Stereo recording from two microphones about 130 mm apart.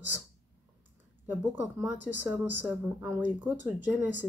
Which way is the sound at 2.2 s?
15° right (ahead or behind).